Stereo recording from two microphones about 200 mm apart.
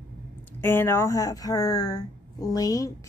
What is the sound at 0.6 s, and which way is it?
Speech, 10° left (ahead or behind).